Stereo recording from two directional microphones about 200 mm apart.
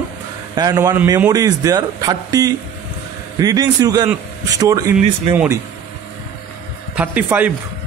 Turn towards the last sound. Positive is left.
turn(degrees=-10)  # may be behind; listen again after turning